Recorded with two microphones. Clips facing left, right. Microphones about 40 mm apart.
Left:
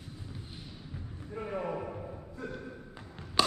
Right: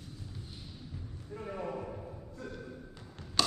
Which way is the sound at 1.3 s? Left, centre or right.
Left.